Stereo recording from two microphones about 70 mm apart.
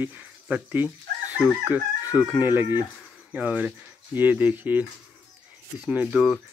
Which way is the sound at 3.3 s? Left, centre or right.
Centre.